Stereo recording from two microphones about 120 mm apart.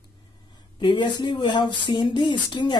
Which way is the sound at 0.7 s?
40° left (ahead or behind).